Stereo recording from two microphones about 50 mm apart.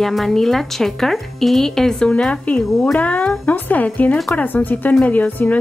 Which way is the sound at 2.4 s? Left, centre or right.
Left.